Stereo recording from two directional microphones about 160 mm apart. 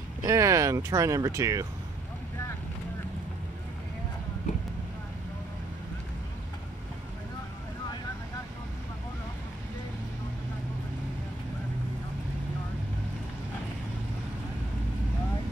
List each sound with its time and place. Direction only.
0.2 s speech: 20° right (ahead or behind)